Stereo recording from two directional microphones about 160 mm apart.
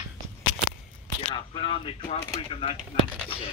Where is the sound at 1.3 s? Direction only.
30° left (ahead or behind).